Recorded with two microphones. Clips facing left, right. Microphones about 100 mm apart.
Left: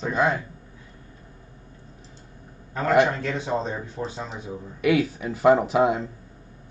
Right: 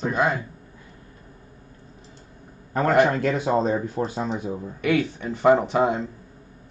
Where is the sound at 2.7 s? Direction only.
50° right (ahead or behind).